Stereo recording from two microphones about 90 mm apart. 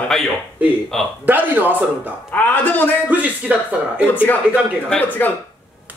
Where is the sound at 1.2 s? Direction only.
20° right (ahead or behind).